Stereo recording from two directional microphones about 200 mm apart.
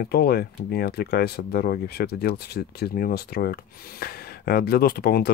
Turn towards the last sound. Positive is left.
turn(degrees=50)  # may be behind; listen again after turning